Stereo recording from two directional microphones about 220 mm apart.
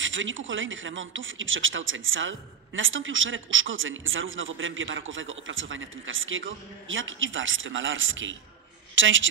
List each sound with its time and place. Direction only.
0.0 s a woman's voice: 60° right (ahead or behind)